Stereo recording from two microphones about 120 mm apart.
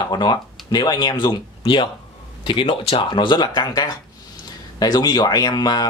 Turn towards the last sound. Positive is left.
turn(degrees=35)  # may be behind; listen again after turning